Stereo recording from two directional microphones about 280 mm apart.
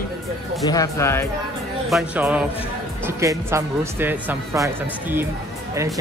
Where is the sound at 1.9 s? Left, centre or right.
Centre.